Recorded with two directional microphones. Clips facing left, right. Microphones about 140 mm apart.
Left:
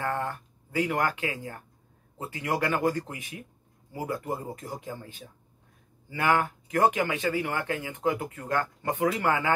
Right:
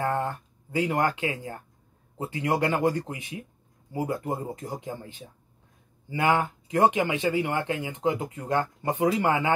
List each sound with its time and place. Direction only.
0.0 s speech: 20° right (ahead or behind)